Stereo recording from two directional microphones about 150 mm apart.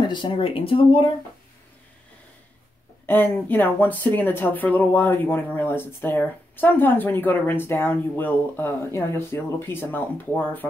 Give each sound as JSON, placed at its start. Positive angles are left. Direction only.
{"t": 0.0, "sound": "speech", "side_deg": 30}
{"t": 3.1, "sound": "speech", "side_deg": 15}